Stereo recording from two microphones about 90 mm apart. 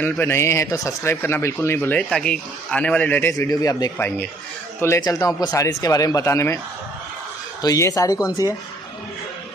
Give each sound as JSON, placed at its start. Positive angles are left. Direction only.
{"t": 0.0, "sound": "speech", "side_deg": 25}
{"t": 1.1, "sound": "speech", "side_deg": 25}
{"t": 2.0, "sound": "speech", "side_deg": 5}
{"t": 3.3, "sound": "a man's voice", "side_deg": 45}
{"t": 4.7, "sound": "a man's voice", "side_deg": 30}
{"t": 6.2, "sound": "speech", "side_deg": 30}
{"t": 7.6, "sound": "speech", "side_deg": 40}